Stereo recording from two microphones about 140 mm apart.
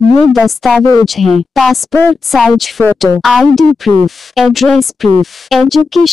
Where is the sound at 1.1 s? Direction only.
Centre (ahead or behind).